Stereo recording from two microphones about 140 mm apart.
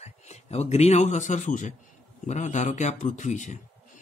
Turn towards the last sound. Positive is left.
turn(degrees=60)  # may be behind; listen again after turning